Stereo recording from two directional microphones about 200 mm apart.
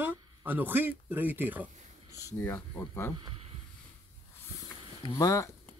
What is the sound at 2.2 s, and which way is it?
Speech, 10° left (ahead or behind).